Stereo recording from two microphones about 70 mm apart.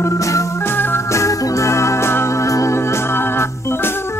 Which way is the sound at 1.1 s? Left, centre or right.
Left.